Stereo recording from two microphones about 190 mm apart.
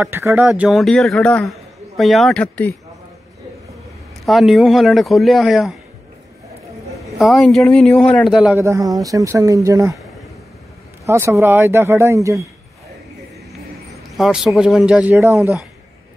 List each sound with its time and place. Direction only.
0.0 s speech: 15° right (ahead or behind)
0.5 s a man's voice: centre (ahead or behind)
4.3 s a man's voice: centre (ahead or behind)
7.0 s a man's voice: centre (ahead or behind)
8.6 s speech: 20° right (ahead or behind)
11.1 s speech: 15° right (ahead or behind)
14.1 s a man's voice: centre (ahead or behind)